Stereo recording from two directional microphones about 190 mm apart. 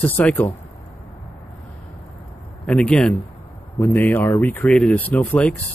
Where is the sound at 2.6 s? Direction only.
5° left (ahead or behind).